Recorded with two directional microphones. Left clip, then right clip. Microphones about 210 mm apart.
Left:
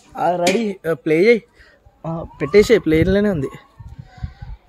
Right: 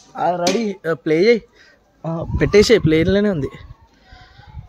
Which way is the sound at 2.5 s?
15° right (ahead or behind).